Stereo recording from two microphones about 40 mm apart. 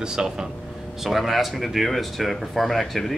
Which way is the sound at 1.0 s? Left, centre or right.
Centre.